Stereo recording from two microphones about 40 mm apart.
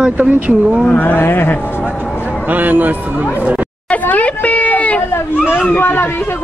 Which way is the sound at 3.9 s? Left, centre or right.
Left.